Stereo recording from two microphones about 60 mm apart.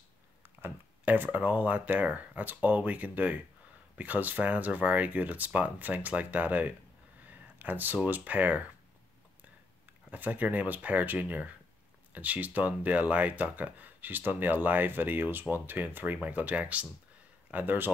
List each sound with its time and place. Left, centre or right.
0.4 s a sound: right
1.0 s speech: right
10.1 s speech: right